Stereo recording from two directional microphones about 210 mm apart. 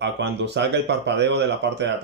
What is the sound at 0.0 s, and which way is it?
A man's voice, 55° right (ahead or behind).